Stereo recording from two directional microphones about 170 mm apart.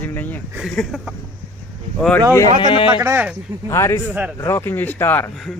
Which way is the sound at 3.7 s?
15° left (ahead or behind).